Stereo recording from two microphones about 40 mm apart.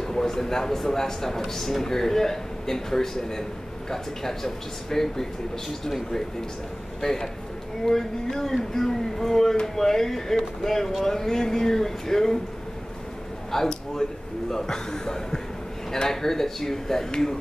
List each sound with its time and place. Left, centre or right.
0.0 s speech: centre
7.0 s a man's voice: centre
13.5 s a sound: centre
14.5 s speech: centre